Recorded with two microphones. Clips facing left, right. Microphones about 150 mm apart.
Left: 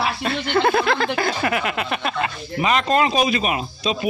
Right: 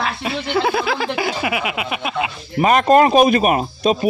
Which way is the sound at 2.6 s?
50° right (ahead or behind).